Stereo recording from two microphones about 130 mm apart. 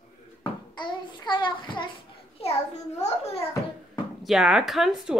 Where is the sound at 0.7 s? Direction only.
35° left (ahead or behind).